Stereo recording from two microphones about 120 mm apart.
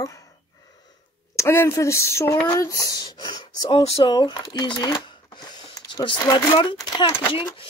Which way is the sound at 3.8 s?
50° left (ahead or behind).